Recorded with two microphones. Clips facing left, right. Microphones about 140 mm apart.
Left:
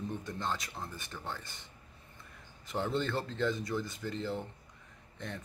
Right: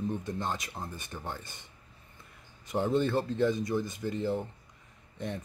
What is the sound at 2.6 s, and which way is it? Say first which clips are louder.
Chopping: right 6 dB; 15° right (ahead or behind).